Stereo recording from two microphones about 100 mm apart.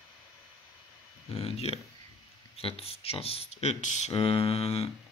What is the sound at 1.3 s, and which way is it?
Speech, 80° left.